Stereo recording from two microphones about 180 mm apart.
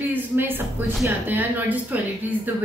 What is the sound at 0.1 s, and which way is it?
Speech, 10° right (ahead or behind).